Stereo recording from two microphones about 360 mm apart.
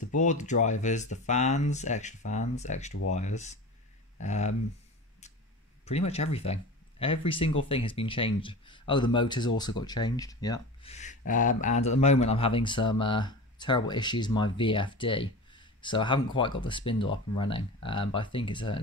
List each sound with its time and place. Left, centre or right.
0.1 s speech: centre
5.9 s speech: centre